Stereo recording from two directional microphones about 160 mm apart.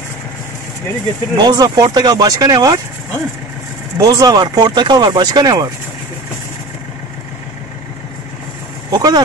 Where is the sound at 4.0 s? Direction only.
20° right (ahead or behind).